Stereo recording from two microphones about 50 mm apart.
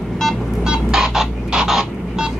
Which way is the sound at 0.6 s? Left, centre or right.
Centre.